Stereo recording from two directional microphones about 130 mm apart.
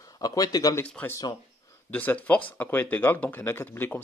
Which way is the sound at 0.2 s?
30° left (ahead or behind).